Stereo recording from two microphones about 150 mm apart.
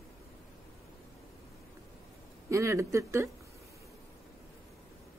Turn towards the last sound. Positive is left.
turn(degrees=-20)  # may be behind; listen again after turning